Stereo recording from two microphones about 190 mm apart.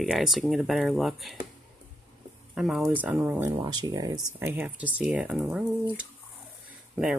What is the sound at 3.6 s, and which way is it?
Speech, 20° right (ahead or behind).